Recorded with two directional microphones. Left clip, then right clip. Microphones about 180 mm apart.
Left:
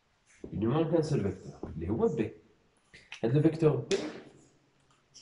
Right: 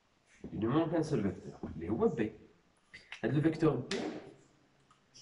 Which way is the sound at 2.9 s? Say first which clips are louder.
Left 5 dB; 20° left (ahead or behind).